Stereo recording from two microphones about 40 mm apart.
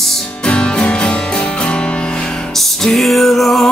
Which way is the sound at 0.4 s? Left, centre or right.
Left.